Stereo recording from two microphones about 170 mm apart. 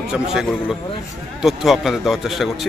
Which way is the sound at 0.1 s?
5° right (ahead or behind).